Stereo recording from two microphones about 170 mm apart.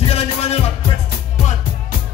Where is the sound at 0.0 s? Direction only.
35° left (ahead or behind).